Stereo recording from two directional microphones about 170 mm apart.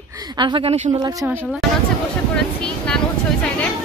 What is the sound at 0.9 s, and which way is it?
Speech, 20° right (ahead or behind).